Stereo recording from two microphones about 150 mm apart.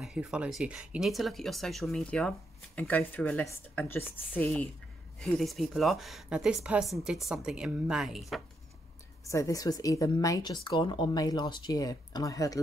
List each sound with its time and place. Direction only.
0.0 s speech: 5° right (ahead or behind); by 4.6 s 10° left (ahead or behind)
5.2 s speech: centre (ahead or behind)
9.2 s a woman's voice: 20° left (ahead or behind)